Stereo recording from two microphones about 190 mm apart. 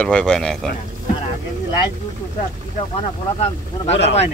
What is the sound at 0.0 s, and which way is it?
Speech, 5° left (ahead or behind).